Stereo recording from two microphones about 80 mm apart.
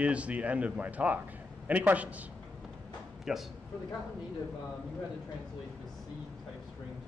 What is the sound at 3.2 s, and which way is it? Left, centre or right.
Speech, centre.